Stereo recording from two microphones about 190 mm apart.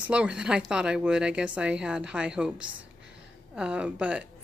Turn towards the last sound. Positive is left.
turn(degrees=-5)  # may be behind; listen again after turning